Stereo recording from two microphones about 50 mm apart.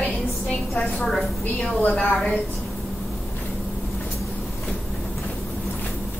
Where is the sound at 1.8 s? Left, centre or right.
Left.